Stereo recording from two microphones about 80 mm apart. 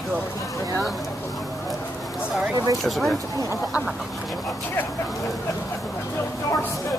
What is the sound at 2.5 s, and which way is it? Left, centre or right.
Speech, right.